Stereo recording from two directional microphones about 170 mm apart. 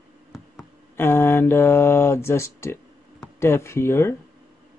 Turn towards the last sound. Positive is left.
turn(degrees=15)  # may be behind; listen again after turning